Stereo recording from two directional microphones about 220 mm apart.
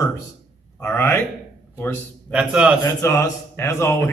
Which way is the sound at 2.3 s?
5° right (ahead or behind).